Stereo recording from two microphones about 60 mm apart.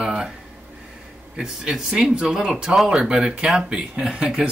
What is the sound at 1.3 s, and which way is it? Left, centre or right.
A man's voice, centre.